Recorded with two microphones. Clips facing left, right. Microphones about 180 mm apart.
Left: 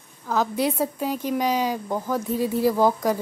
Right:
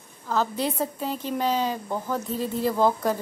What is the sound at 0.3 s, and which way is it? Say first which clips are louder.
A woman's voice: left 3 dB; 10° left (ahead or behind).